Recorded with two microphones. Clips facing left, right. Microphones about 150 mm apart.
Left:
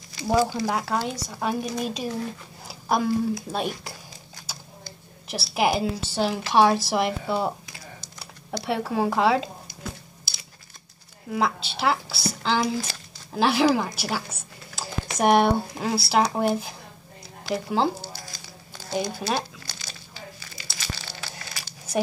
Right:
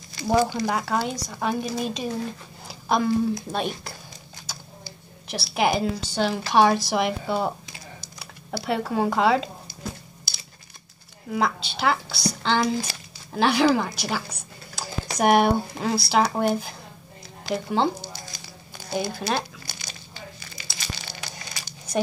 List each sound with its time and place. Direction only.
0.4 s speech: 20° right (ahead or behind)
0.7 s a woman's voice: centre (ahead or behind)
4.5 s a sound: 5° left (ahead or behind)
4.8 s a woman's voice: 5° left (ahead or behind)
8.5 s a woman's voice: centre (ahead or behind)
10.3 s a sound: centre (ahead or behind)
11.2 s a woman's voice: centre (ahead or behind)
18.0 s a sound: 20° right (ahead or behind)
18.9 s speech: 5° right (ahead or behind)
19.1 s speech: 10° left (ahead or behind)
19.6 s crumpling: 15° right (ahead or behind)